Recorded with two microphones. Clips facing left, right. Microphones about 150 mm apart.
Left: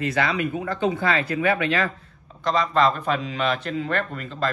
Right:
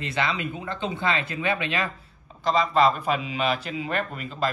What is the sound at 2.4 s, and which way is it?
A man's voice, 5° right (ahead or behind).